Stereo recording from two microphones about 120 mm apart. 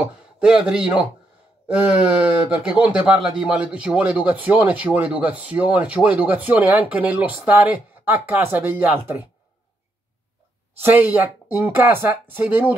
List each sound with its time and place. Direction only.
0.0 s a man's voice: 5° right (ahead or behind)
10.8 s a man's voice: 15° right (ahead or behind)